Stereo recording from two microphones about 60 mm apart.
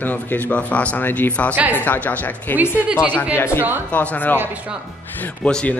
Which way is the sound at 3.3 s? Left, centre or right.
Left.